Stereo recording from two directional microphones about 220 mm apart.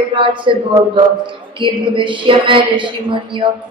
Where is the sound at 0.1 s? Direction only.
20° right (ahead or behind).